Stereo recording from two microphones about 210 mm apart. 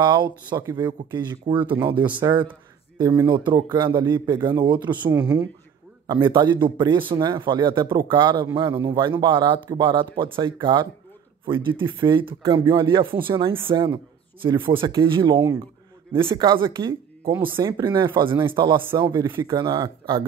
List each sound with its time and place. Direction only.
0.0 s speech: 20° right (ahead or behind)
1.4 s speech: 25° right (ahead or behind)
5.1 s speech: 5° right (ahead or behind)
6.0 s speech: 20° right (ahead or behind)